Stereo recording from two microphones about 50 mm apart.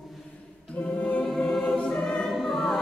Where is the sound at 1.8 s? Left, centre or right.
Centre.